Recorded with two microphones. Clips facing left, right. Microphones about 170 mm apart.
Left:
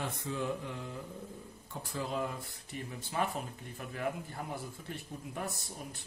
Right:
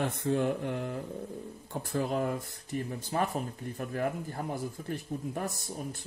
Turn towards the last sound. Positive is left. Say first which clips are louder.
# right 6 dB
turn(degrees=-40)  # may be behind; listen again after turning